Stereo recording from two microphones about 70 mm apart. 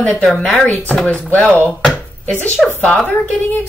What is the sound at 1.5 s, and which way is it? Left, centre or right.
A woman's voice, centre.